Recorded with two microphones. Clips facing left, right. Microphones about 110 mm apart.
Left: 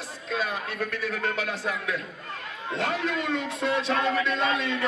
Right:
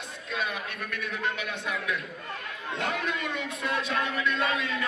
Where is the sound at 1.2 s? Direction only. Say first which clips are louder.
Left 3 dB; 35° left (ahead or behind).